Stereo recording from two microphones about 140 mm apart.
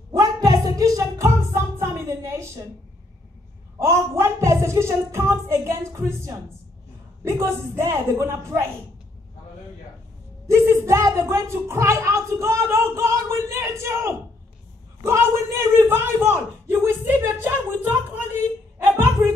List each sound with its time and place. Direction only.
0.1 s music: 25° right (ahead or behind)
3.8 s a woman's voice: 20° right (ahead or behind)
10.5 s a woman's voice: 20° right (ahead or behind)